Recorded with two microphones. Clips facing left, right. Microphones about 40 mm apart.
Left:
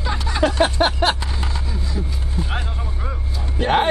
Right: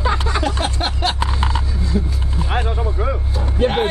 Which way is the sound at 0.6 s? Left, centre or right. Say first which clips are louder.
Left 5 dB; left.